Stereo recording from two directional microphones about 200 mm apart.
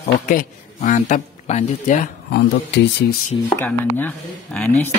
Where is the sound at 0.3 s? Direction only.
40° left (ahead or behind).